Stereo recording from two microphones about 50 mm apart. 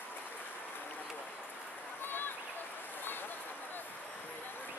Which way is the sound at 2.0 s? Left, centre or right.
Left.